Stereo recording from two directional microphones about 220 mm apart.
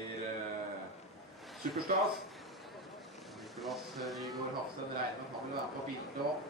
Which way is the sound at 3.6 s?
Centre (ahead or behind).